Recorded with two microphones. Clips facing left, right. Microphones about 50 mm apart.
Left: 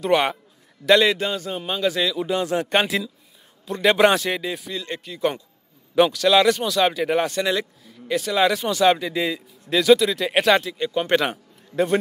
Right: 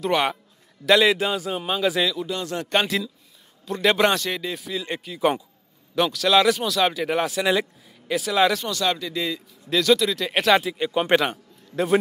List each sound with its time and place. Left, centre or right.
0.0 s speech: centre
2.1 s speech: left; by 8.6 s centre
8.6 s speech: left; by 10.6 s centre
10.6 s speech: centre
11.1 s a man's voice: centre